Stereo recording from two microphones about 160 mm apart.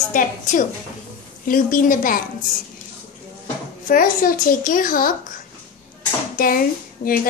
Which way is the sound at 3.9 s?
60° left (ahead or behind).